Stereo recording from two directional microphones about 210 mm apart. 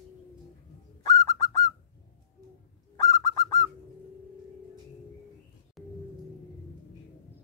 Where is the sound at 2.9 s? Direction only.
15° left (ahead or behind).